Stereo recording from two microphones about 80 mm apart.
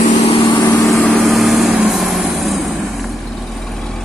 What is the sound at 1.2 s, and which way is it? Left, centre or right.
Vehicle, centre.